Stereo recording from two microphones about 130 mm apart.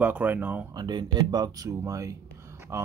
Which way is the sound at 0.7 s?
35° right (ahead or behind).